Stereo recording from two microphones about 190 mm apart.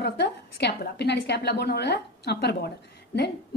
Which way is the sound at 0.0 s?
60° left (ahead or behind).